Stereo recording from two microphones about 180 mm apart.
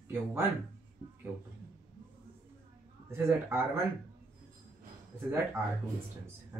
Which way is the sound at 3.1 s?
15° right (ahead or behind).